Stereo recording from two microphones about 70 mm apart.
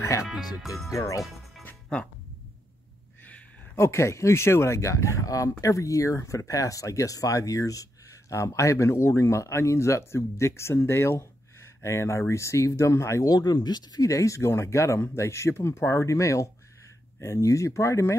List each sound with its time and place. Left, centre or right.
0.0 s speech: left
0.6 s speech: centre
0.9 s speech: left
3.7 s speech: left
13.3 s speech: left
14.0 s speech: left